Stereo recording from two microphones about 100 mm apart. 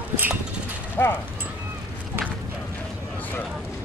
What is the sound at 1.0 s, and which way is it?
Clip-clop, 25° left (ahead or behind).